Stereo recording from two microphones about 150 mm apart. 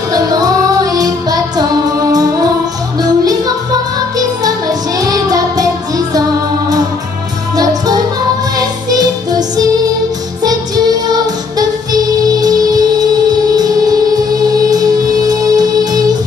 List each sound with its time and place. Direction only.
0.1 s music: 25° right (ahead or behind)
7.5 s music: 25° right (ahead or behind)
11.1 s music: 25° right (ahead or behind)